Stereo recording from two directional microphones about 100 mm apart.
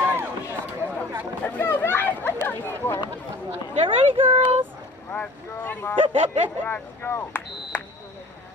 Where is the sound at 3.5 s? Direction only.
65° right (ahead or behind).